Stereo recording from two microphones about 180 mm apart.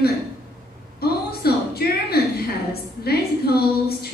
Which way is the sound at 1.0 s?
60° left (ahead or behind).